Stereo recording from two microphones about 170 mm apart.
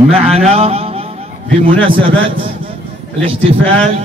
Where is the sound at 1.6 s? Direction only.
30° right (ahead or behind).